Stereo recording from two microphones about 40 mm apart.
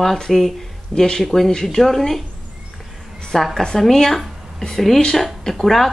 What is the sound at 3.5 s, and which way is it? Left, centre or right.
A woman's voice, centre.